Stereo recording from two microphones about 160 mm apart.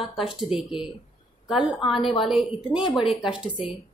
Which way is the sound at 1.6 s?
30° left (ahead or behind).